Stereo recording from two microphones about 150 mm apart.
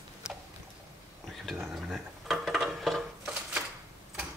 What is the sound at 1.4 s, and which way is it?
Dishes, centre (ahead or behind).